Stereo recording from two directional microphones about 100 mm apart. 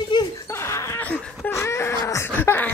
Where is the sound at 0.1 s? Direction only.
45° left (ahead or behind).